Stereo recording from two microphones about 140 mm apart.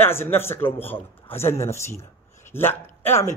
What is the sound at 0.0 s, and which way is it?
A man's voice, 15° left (ahead or behind).